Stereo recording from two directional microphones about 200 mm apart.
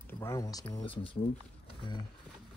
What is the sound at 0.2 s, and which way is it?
Speech, 15° left (ahead or behind).